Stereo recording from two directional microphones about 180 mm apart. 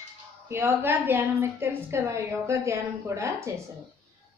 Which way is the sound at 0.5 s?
10° right (ahead or behind).